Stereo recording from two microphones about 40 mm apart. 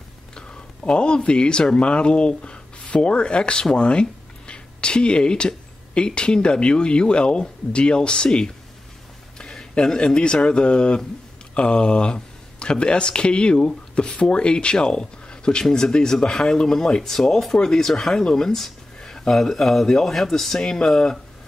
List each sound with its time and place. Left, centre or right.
0.4 s speech: left
9.4 s a sound: centre
9.9 s speech: left